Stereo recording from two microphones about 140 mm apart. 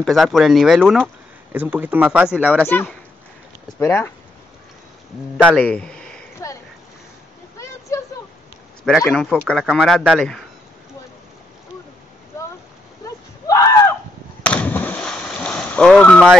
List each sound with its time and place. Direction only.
0.0 s speech: centre (ahead or behind)
1.0 s speech: 15° right (ahead or behind)
2.7 s speech: 15° left (ahead or behind)
5.6 s speech: 10° left (ahead or behind)
7.5 s a sound: 20° left (ahead or behind)
9.1 s speech: 5° left (ahead or behind)
13.0 s a sound: 25° left (ahead or behind)
14.4 s splash: 10° left (ahead or behind)